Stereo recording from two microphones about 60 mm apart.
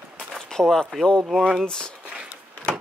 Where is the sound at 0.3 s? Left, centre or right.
Centre.